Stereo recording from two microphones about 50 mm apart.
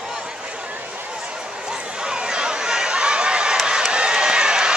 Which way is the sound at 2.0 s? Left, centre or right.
Centre.